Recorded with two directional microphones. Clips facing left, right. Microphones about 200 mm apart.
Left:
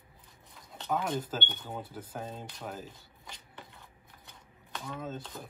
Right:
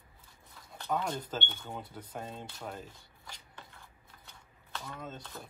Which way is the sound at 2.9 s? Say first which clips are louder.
Left 2 dB; 20° left (ahead or behind).